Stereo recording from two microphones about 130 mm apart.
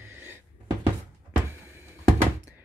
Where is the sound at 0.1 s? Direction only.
15° right (ahead or behind).